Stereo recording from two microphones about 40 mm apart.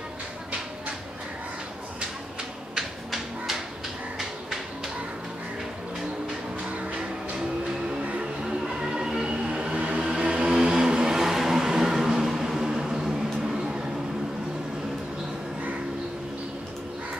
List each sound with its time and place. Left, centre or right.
4.2 s a sound: centre
8.2 s music: centre
9.9 s vehicle: right